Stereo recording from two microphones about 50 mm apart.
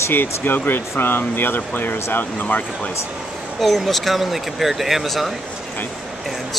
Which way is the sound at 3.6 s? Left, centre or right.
Centre.